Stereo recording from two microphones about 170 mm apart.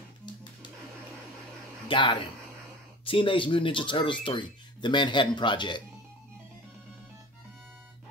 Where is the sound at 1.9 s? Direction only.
30° left (ahead or behind).